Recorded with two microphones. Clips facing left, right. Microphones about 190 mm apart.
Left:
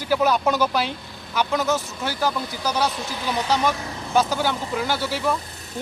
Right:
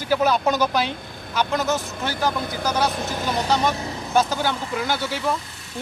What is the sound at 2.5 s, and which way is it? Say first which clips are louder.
Speech: right 1 dB; 50° right (ahead or behind).